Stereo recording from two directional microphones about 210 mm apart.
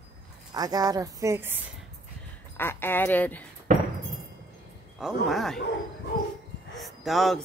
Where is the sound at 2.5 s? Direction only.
10° left (ahead or behind).